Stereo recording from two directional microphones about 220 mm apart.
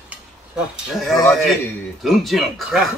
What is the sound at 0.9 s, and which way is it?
Speech, centre (ahead or behind).